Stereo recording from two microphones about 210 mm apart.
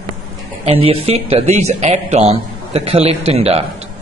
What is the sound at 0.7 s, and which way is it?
Speech, 30° right (ahead or behind).